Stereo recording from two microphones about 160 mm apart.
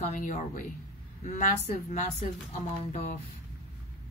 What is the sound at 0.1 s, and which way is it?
A woman's voice, 50° left (ahead or behind).